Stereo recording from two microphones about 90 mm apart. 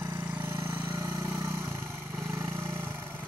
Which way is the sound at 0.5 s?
30° right (ahead or behind).